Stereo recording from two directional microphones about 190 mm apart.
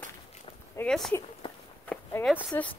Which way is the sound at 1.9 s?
5° left (ahead or behind).